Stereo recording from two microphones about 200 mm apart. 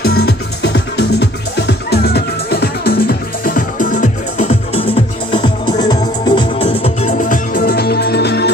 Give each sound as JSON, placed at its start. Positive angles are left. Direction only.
{"t": 0.0, "sound": "music", "side_deg": 50}